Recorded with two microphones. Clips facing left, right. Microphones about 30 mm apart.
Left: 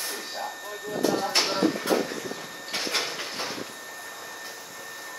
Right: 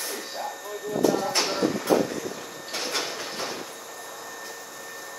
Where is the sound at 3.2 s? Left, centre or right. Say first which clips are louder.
Even; centre.